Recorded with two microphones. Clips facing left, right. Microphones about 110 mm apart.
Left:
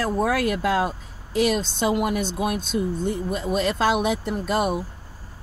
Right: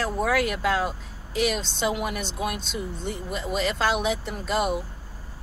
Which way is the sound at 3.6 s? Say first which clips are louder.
Left 2 dB; 55° left (ahead or behind).